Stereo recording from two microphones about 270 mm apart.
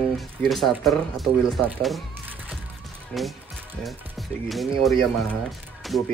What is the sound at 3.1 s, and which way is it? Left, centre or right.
Speech, centre.